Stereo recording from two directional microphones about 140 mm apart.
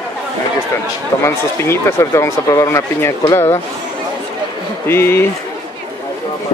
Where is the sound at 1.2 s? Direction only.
20° left (ahead or behind).